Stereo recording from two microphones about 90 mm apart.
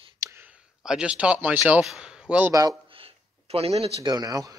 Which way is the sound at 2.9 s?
90° right.